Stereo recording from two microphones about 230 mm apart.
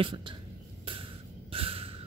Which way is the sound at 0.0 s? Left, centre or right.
Right.